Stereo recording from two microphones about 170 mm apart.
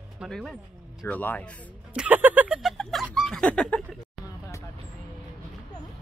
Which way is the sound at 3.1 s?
5° left (ahead or behind).